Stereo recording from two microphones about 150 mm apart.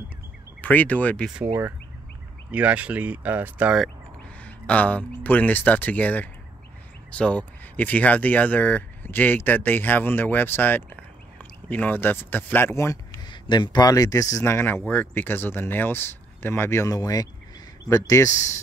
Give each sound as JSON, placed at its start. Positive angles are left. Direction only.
{"t": 0.6, "sound": "speech", "side_deg": 10}
{"t": 1.3, "sound": "speech", "side_deg": -10}
{"t": 4.4, "sound": "speech", "side_deg": 10}